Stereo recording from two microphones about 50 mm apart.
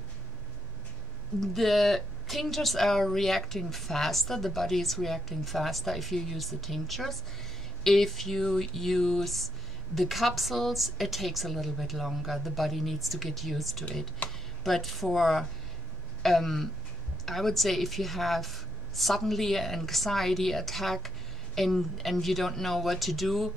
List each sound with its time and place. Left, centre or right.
1.4 s a woman's voice: centre
14.2 s speech: left
14.6 s a woman's voice: centre